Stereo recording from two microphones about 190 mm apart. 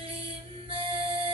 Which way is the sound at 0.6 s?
30° right (ahead or behind).